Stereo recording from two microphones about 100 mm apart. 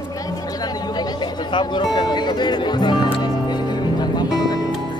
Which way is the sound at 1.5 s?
50° left (ahead or behind).